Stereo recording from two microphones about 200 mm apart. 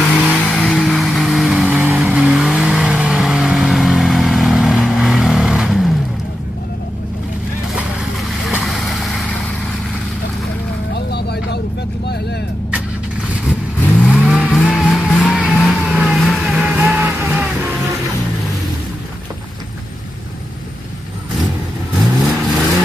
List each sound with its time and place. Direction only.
0.1 s vehicle: centre (ahead or behind)
7.7 s vehicle: centre (ahead or behind)
11.1 s vehicle: 55° left (ahead or behind)
13.5 s vehicle: centre (ahead or behind)
22.0 s vehicle: centre (ahead or behind)